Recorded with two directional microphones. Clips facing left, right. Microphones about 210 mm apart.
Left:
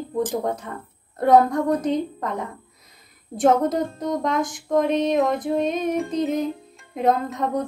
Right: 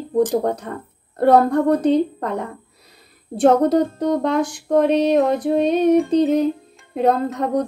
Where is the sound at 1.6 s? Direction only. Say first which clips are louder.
Right 6 dB; 30° right (ahead or behind).